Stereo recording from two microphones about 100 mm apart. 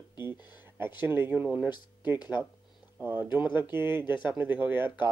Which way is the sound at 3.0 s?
20° right (ahead or behind).